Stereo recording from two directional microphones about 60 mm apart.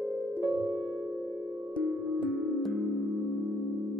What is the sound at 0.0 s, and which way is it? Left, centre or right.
Music, centre.